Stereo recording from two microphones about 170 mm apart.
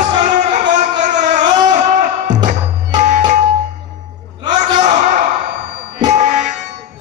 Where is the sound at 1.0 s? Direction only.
45° right (ahead or behind).